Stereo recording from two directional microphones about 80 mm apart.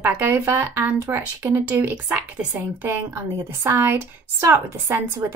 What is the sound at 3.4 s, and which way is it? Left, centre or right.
A child's voice, right.